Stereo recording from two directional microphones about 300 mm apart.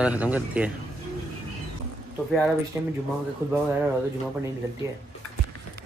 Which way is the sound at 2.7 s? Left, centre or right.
Centre.